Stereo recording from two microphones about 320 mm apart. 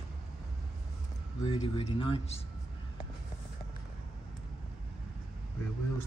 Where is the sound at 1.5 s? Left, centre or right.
Centre.